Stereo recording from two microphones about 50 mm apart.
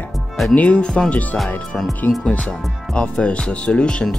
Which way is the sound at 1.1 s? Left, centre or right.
Left.